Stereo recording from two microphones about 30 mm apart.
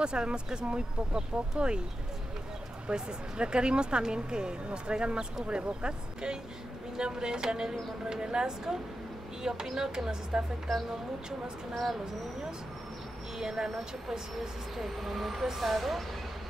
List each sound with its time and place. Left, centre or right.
0.0 s speech: right
2.9 s speech: right
11.7 s speech: centre
13.4 s speech: centre
15.0 s speech: centre